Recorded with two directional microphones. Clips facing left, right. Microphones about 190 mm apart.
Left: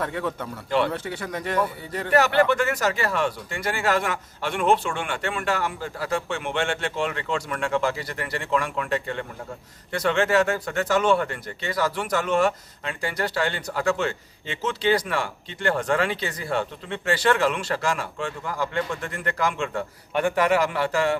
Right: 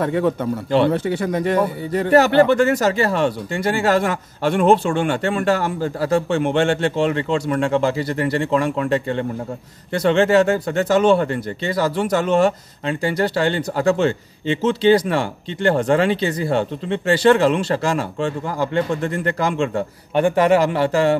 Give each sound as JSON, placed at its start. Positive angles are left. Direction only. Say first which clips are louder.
{"t": 0.0, "sound": "speech", "louder": "right 9 dB", "side_deg": -25}